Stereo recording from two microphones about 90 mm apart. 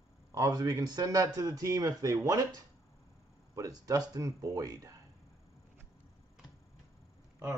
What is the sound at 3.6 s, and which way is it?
Speech, 40° right (ahead or behind).